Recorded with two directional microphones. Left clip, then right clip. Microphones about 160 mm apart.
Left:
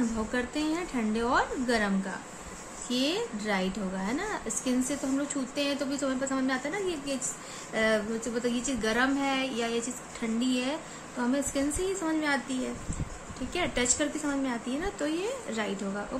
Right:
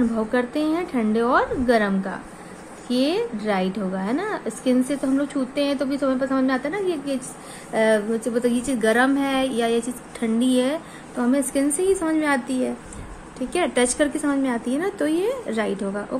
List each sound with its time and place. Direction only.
0.3 s a woman's voice: 30° right (ahead or behind); by 12.4 s 50° right (ahead or behind)
13.5 s a woman's voice: 50° right (ahead or behind)